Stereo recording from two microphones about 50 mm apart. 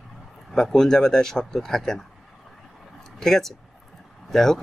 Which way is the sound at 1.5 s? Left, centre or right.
Centre.